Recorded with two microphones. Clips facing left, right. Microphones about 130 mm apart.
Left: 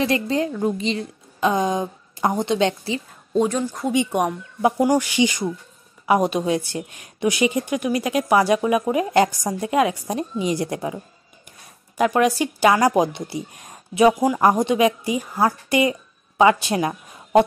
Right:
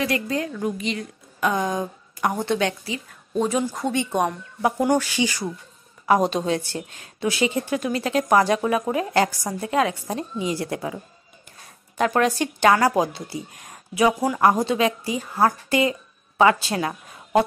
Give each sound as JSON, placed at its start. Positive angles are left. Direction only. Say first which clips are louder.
{"t": 0.0, "sound": "a woman's voice", "louder": "left 4 dB", "side_deg": 25}
{"t": 3.4, "sound": "speech", "louder": "even", "side_deg": -5}
{"t": 3.8, "sound": "a woman's voice", "louder": "left 2 dB", "side_deg": 15}
{"t": 12.0, "sound": "a woman's voice", "louder": "left 2 dB", "side_deg": 10}